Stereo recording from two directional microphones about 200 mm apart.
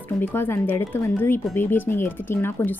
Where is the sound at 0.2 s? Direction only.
10° left (ahead or behind).